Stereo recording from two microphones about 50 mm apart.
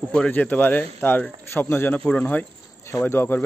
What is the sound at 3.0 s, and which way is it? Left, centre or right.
Speech, left.